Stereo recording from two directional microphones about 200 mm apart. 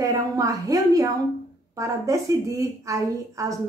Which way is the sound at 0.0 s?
15° right (ahead or behind).